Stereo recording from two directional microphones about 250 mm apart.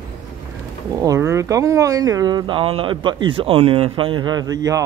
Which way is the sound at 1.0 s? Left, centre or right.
Centre.